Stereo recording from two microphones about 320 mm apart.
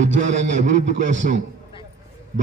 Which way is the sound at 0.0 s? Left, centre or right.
Right.